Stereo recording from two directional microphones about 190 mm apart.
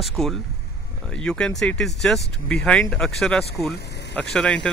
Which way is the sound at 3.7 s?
60° left (ahead or behind).